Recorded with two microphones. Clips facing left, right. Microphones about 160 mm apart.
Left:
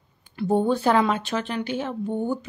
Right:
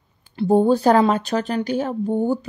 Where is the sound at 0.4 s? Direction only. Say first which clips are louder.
Right 5 dB; 35° right (ahead or behind).